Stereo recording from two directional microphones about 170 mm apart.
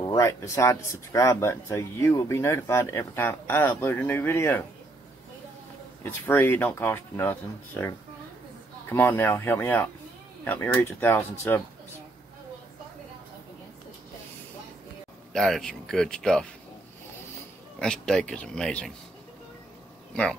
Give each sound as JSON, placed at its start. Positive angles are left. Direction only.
{"t": 0.0, "sound": "speech", "side_deg": 20}
{"t": 6.2, "sound": "speech", "side_deg": 10}
{"t": 15.3, "sound": "speech", "side_deg": 0}
{"t": 17.7, "sound": "speech", "side_deg": 5}